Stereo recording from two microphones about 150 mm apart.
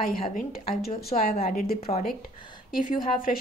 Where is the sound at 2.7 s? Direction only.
65° left (ahead or behind).